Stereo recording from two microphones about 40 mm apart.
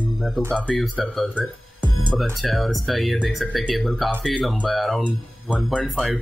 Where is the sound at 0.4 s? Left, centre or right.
Centre.